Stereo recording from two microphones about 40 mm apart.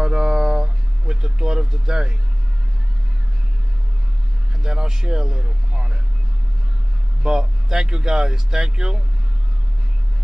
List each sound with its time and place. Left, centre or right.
0.0 s a sound: centre
4.6 s speech: centre
7.2 s speech: centre